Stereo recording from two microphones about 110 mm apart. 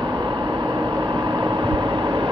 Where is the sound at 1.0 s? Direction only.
40° right (ahead or behind).